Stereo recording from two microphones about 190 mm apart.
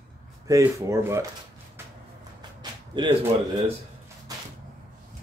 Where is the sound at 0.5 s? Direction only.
15° right (ahead or behind).